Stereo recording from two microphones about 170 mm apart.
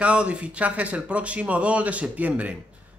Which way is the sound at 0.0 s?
5° right (ahead or behind).